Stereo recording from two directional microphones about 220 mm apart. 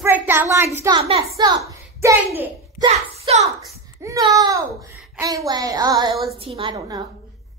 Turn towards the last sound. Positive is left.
turn(degrees=-20)  # may be behind; listen again after turning